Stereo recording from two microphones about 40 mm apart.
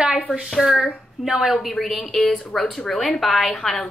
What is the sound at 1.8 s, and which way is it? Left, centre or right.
A woman's voice, centre.